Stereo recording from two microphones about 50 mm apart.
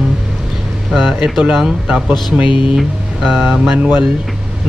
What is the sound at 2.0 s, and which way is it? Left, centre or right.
Speech, right.